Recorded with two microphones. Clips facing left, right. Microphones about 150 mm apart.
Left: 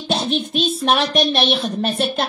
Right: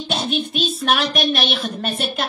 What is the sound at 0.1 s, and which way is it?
Music, centre (ahead or behind).